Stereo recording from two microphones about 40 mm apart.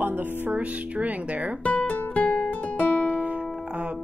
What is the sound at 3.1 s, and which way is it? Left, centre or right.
Music, right.